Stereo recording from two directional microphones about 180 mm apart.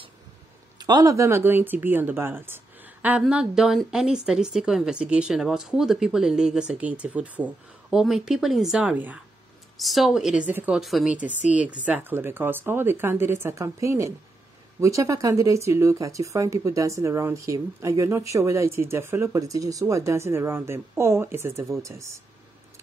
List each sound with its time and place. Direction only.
0.7 s speech: 20° right (ahead or behind)